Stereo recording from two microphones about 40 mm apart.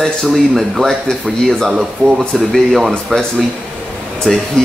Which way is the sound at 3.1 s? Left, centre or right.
Centre.